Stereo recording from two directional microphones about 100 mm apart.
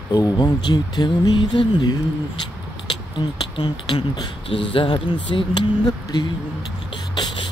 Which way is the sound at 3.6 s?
45° left (ahead or behind).